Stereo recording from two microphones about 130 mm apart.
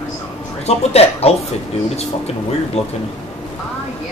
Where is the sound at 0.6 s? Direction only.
55° left (ahead or behind).